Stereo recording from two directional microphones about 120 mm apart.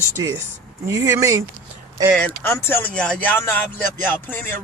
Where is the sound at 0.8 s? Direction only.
25° right (ahead or behind).